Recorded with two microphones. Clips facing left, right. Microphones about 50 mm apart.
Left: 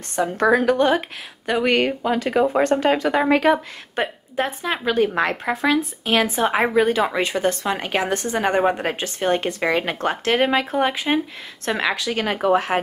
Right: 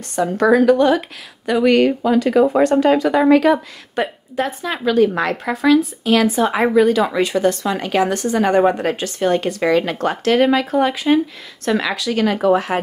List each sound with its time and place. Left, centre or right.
0.1 s a woman's voice: left